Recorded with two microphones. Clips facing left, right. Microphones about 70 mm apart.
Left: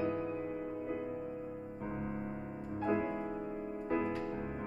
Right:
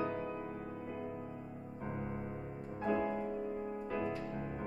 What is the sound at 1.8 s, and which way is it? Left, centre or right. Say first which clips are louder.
Music: left 1 dB; centre.